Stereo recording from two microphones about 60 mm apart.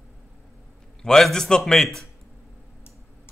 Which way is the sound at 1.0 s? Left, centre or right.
Centre.